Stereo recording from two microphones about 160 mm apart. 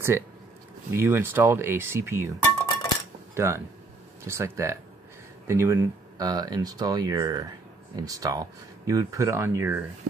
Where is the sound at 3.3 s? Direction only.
15° right (ahead or behind).